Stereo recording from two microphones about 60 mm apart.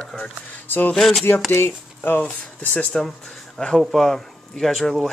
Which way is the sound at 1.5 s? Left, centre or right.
Left.